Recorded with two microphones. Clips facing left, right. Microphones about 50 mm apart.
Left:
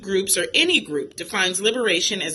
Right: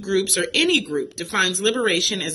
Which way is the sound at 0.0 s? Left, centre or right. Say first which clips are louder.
Right 1 dB; left.